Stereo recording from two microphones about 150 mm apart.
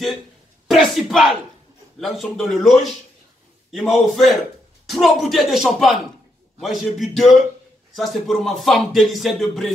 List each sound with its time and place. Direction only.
0.7 s speech: centre (ahead or behind)